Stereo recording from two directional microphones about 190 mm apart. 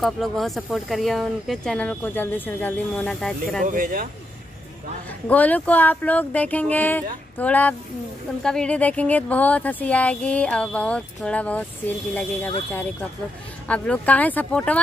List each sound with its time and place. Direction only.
0.0 s speech: centre (ahead or behind)
3.6 s speech: 45° right (ahead or behind)
5.3 s speech: 10° left (ahead or behind)
13.7 s speech: 5° left (ahead or behind)